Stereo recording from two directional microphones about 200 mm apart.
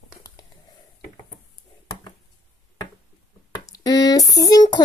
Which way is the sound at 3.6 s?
20° left (ahead or behind).